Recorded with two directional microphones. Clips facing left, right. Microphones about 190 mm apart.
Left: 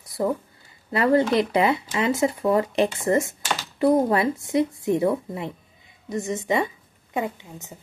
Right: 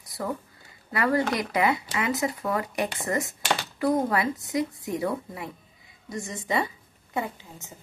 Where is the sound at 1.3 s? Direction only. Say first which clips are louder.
Left 5 dB; 25° left (ahead or behind).